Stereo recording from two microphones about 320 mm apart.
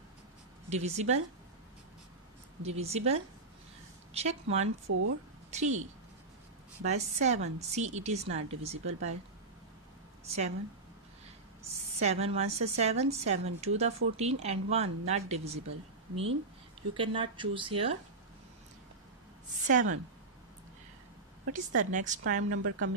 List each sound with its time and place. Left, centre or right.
0.7 s a woman's voice: right
2.6 s a woman's voice: centre
4.9 s speech: right
5.5 s a woman's voice: right
6.8 s a woman's voice: right
10.2 s a woman's voice: centre
12.0 s a woman's voice: centre
16.9 s speech: centre
19.7 s a woman's voice: right
21.5 s a woman's voice: right
22.5 s a woman's voice: right